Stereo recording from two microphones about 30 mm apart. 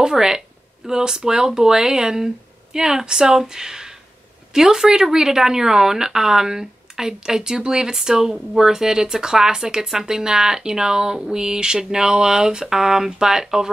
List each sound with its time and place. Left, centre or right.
0.0 s speech: centre